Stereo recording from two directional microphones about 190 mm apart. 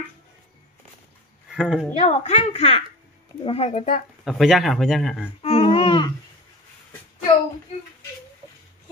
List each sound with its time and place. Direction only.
1.5 s speech: centre (ahead or behind)
2.0 s a child's voice: 35° left (ahead or behind)
4.2 s speech: centre (ahead or behind)
5.4 s a sound: 30° left (ahead or behind)